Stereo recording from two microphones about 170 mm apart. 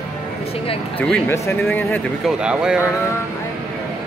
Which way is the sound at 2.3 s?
5° right (ahead or behind).